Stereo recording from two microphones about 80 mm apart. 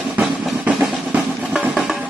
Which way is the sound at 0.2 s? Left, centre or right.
Centre.